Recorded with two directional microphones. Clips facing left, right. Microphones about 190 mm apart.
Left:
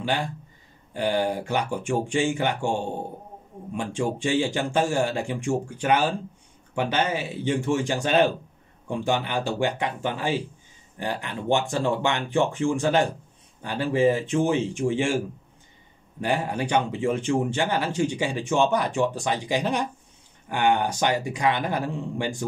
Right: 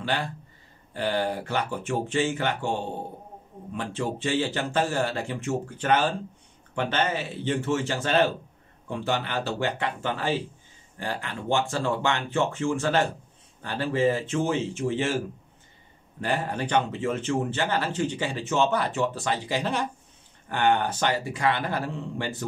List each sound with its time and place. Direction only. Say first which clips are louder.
0.0 s speech: left 2 dB; 15° left (ahead or behind)